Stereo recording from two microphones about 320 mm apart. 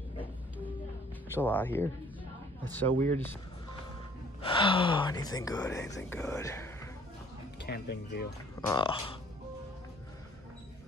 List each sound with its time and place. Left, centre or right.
1.3 s speech: centre
4.4 s speech: centre
7.6 s speech: left
8.5 s speech: centre